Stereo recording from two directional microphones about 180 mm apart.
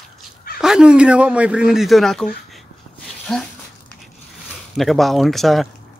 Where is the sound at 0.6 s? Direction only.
5° right (ahead or behind).